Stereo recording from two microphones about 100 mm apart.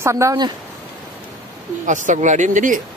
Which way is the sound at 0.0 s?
30° right (ahead or behind).